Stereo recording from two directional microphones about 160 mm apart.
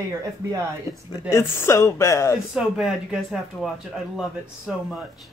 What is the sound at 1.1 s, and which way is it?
Speech, 20° left (ahead or behind).